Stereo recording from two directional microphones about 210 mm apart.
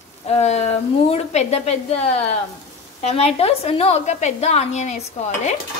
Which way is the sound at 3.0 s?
30° left (ahead or behind).